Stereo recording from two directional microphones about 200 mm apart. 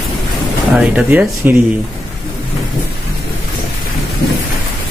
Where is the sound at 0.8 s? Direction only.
5° right (ahead or behind).